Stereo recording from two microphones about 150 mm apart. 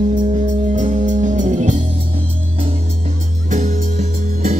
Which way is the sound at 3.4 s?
60° right (ahead or behind).